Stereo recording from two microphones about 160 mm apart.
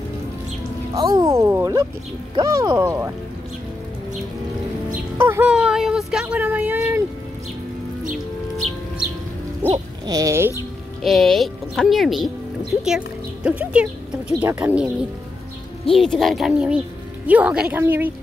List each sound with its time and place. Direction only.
0.9 s speech: 25° right (ahead or behind)
5.1 s speech: 15° right (ahead or behind)
9.7 s owl: 25° right (ahead or behind)
11.0 s a woman's voice: centre (ahead or behind)
15.8 s a woman's voice: centre (ahead or behind); by 18.1 s 15° right (ahead or behind)